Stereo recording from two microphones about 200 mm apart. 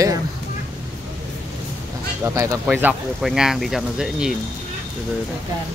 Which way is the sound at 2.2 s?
15° right (ahead or behind).